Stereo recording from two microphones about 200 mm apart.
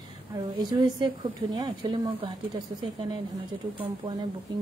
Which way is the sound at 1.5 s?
25° right (ahead or behind).